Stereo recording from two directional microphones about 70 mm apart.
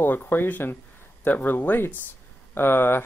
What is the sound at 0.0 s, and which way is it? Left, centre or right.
Speech, left.